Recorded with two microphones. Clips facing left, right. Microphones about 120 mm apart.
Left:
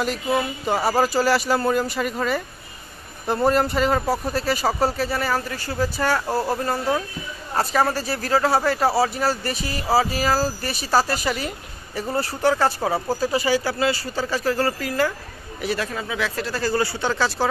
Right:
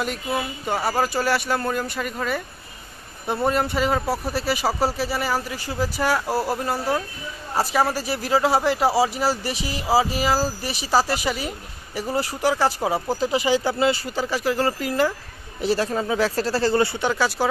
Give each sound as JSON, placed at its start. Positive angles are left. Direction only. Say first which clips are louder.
{"t": 0.0, "sound": "speech", "louder": "left 3 dB", "side_deg": 0}
{"t": 15.6, "sound": "speech", "louder": "right 4 dB", "side_deg": -30}
{"t": 17.1, "sound": "speech", "louder": "even", "side_deg": -10}